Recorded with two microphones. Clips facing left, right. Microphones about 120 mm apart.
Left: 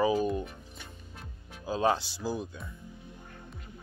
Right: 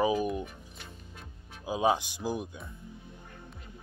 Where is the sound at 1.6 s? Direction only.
15° right (ahead or behind).